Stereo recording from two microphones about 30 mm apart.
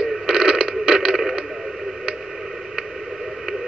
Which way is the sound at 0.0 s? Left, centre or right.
Right.